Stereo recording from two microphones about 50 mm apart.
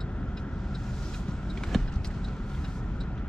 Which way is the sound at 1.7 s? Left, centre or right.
Centre.